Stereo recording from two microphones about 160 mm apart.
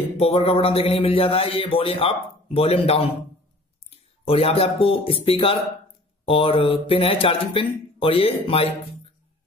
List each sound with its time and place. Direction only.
0.2 s a man's voice: 40° left (ahead or behind)